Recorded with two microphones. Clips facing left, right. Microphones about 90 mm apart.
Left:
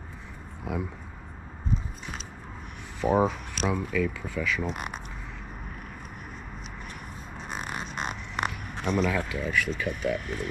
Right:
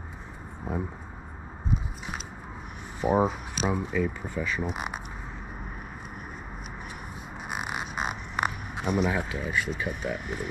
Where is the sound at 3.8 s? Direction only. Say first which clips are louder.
Even; 20° right (ahead or behind).